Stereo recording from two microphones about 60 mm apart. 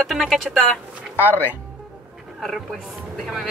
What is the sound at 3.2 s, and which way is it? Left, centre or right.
Speech, centre.